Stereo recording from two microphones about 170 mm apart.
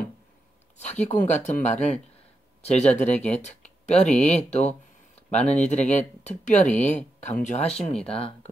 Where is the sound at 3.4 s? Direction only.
40° left (ahead or behind).